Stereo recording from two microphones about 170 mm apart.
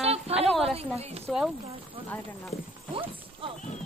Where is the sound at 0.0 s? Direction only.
35° right (ahead or behind).